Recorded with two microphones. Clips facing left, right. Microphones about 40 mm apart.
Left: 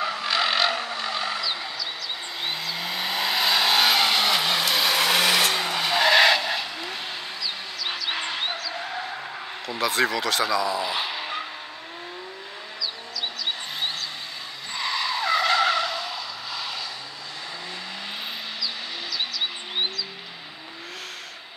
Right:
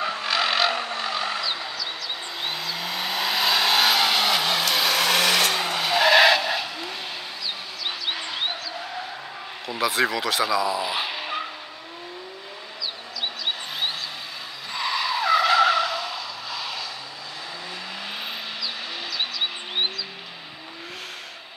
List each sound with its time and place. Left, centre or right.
0.0 s vehicle: centre
0.3 s vehicle: centre
2.4 s vehicle: centre
9.7 s speech: centre
14.7 s skidding: centre
19.1 s vehicle: centre